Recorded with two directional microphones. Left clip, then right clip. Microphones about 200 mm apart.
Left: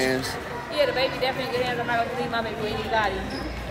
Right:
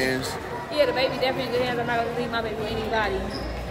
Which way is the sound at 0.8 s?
25° right (ahead or behind).